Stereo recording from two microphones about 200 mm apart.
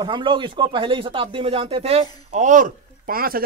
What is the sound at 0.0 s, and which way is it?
Speech, 25° right (ahead or behind).